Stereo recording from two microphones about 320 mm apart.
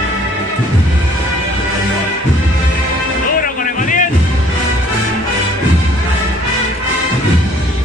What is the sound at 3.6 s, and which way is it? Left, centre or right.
Music, left.